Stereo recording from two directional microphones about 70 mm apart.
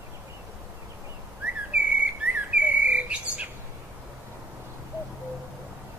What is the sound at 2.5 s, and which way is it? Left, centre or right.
Bird, centre.